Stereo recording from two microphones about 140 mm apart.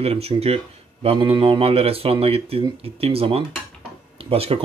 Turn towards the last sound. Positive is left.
turn(degrees=-45)  # may be behind; listen again after turning